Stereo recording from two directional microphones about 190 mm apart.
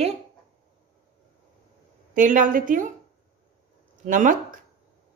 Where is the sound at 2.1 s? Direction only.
45° right (ahead or behind).